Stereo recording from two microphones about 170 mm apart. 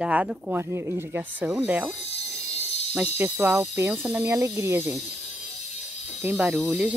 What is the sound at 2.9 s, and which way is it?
Speech, 10° right (ahead or behind).